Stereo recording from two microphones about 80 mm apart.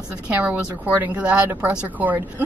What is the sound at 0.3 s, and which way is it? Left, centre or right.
A woman's voice, centre.